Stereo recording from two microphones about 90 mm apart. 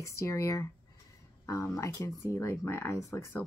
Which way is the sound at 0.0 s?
35° left (ahead or behind).